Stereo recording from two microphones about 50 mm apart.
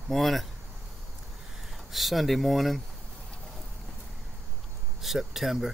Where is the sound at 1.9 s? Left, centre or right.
Centre.